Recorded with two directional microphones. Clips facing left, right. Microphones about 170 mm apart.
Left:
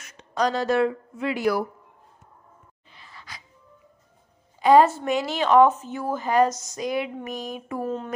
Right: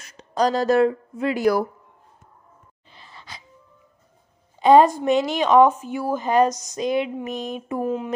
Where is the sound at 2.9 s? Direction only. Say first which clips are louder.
Right 2 dB; 30° right (ahead or behind).